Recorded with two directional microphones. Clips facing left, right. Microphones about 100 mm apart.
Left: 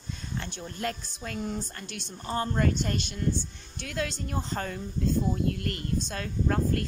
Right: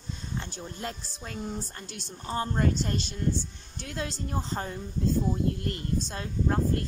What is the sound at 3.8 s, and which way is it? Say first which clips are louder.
Speech: left 2 dB; 30° right (ahead or behind).